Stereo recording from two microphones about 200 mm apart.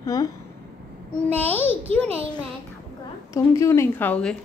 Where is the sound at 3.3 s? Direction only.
15° left (ahead or behind).